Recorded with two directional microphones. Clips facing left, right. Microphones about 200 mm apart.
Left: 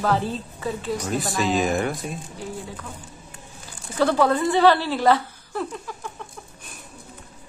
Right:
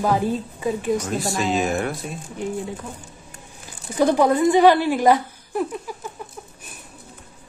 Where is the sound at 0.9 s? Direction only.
Centre (ahead or behind).